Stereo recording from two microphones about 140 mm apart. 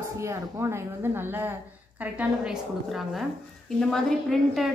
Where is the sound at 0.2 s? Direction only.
20° right (ahead or behind).